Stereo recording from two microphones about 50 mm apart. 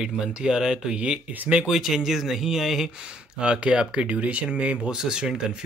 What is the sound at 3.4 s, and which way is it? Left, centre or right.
Speech, centre.